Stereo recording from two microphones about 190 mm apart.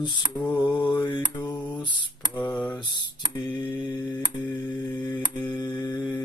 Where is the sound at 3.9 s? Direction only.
20° left (ahead or behind).